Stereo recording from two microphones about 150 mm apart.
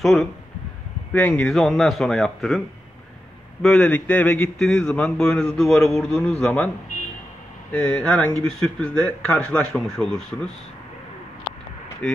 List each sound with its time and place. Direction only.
0.0 s a man's voice: centre (ahead or behind)
3.6 s a man's voice: 5° left (ahead or behind)
7.7 s a man's voice: 5° left (ahead or behind)
12.0 s speech: 10° left (ahead or behind)